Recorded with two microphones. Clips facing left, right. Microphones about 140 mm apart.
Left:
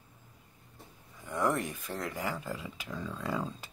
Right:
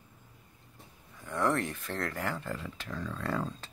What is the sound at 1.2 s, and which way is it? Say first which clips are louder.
Speech: right 1 dB; 15° left (ahead or behind).